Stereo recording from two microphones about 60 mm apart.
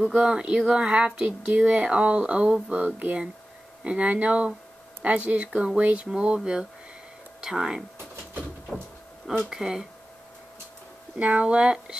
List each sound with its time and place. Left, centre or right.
0.0 s speech: centre
9.5 s speech: centre
11.1 s speech: right